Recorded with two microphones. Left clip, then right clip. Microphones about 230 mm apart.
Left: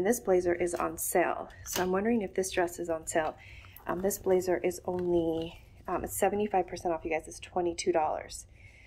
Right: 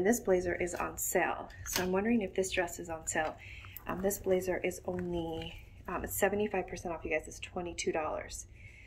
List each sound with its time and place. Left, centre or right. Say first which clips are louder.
0.0 s a woman's voice: left 3 dB; centre